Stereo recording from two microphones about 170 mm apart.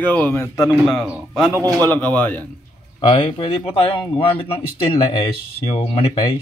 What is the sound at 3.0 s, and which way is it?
Speech, 30° left (ahead or behind).